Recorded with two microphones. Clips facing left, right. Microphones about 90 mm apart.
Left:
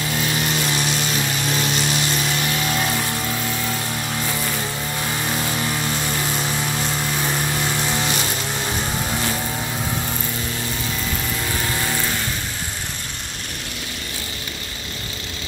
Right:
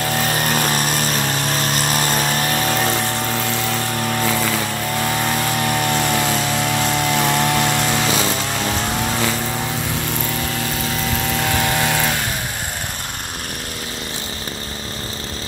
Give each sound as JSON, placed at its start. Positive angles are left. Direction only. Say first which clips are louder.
{"t": 0.2, "sound": "vehicle", "louder": "right 2 dB", "side_deg": -50}
{"t": 6.7, "sound": "vehicle", "louder": "right 6 dB", "side_deg": -70}
{"t": 11.5, "sound": "music", "louder": "right 5 dB", "side_deg": -75}